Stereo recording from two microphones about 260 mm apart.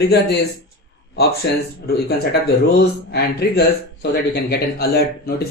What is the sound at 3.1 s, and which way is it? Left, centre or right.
Speech, left.